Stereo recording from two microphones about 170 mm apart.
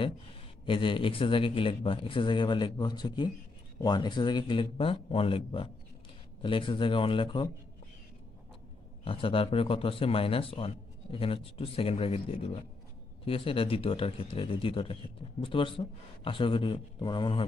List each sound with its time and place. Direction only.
0.7 s a man's voice: 30° left (ahead or behind)
9.0 s a man's voice: 30° left (ahead or behind)